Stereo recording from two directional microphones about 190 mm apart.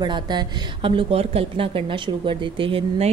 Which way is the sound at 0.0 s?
20° right (ahead or behind).